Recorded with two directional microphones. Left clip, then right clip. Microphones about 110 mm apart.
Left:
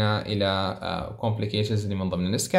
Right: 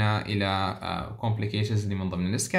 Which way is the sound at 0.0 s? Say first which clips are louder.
Left 3 dB; 5° right (ahead or behind).